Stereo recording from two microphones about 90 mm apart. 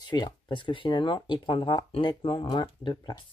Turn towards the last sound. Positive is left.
turn(degrees=55)  # may be behind; listen again after turning